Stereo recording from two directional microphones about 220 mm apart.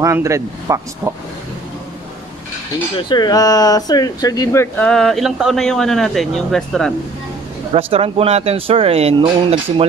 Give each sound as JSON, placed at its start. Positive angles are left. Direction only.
{"t": 0.0, "sound": "speech", "side_deg": -15}
{"t": 3.0, "sound": "speech", "side_deg": 20}
{"t": 7.7, "sound": "speech", "side_deg": -25}